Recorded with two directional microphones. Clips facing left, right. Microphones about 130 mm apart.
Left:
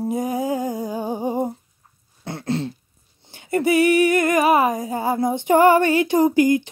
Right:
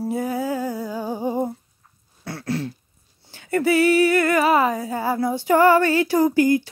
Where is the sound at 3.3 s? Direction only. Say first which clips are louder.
Left 1 dB; 15° left (ahead or behind).